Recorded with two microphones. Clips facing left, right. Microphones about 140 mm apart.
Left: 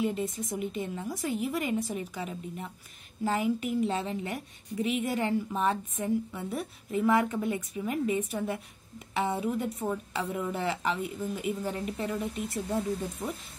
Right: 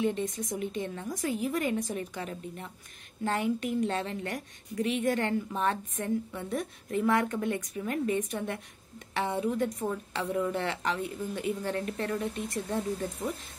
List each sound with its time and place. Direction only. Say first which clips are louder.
0.0 s a woman's voice: right 1 dB; 5° left (ahead or behind)